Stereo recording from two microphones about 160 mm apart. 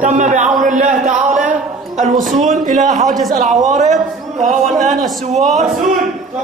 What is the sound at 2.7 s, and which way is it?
Speech, 50° right (ahead or behind).